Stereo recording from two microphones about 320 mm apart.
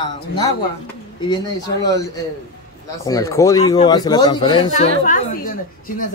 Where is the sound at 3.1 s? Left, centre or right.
Centre.